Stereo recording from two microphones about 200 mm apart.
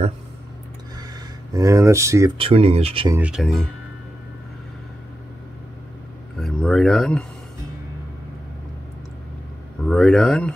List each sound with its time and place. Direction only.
1.5 s speech: 15° right (ahead or behind)
2.3 s speech: 30° right (ahead or behind)
3.2 s speech: 5° right (ahead or behind)
6.3 s speech: centre (ahead or behind)
9.8 s speech: centre (ahead or behind)